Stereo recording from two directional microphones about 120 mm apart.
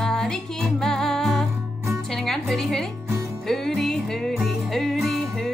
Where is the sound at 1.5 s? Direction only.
20° right (ahead or behind).